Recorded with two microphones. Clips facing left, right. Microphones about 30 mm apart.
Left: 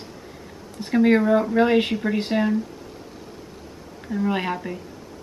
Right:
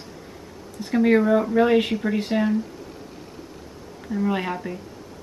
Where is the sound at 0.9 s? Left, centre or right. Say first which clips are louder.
Left 1 dB; centre.